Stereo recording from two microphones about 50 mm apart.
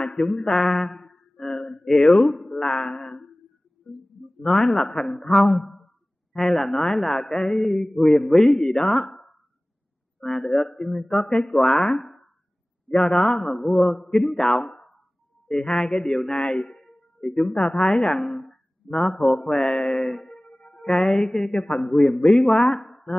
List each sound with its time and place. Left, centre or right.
0.0 s mantra: centre
3.9 s guitar: centre
4.4 s speech: centre
10.2 s speech: centre
20.4 s music: left
20.7 s speech: centre